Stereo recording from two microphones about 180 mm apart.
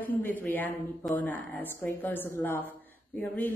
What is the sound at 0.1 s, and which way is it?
A woman's voice, 10° left (ahead or behind).